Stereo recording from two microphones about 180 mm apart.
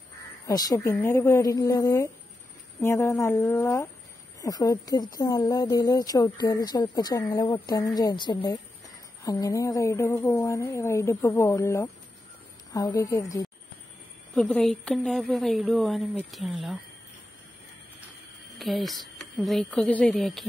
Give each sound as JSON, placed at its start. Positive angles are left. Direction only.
{"t": 0.5, "sound": "speech", "side_deg": 20}
{"t": 14.3, "sound": "speech", "side_deg": 5}
{"t": 18.6, "sound": "speech", "side_deg": 0}